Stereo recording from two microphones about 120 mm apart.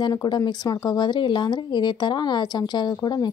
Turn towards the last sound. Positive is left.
turn(degrees=35)  # may be behind; listen again after turning